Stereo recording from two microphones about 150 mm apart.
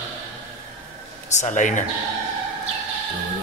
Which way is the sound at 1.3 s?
55° left (ahead or behind).